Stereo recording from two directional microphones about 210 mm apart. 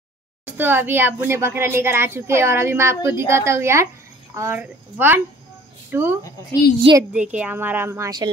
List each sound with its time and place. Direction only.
0.5 s speech: 10° right (ahead or behind)
6.8 s a child's voice: 20° right (ahead or behind)
7.1 s speech: 5° right (ahead or behind)